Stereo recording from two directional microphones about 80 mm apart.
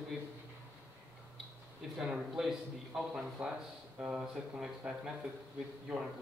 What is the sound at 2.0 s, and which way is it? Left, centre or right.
A man's voice, centre.